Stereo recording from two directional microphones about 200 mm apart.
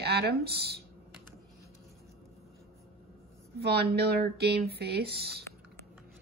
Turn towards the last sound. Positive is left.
turn(degrees=-55)  # may be behind; listen again after turning